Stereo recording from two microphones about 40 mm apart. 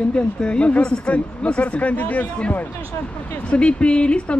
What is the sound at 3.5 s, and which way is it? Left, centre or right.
Speech, left.